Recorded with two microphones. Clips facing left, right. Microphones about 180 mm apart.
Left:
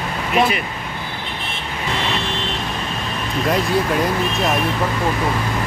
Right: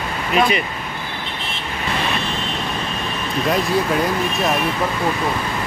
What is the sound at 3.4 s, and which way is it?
Speech, centre (ahead or behind).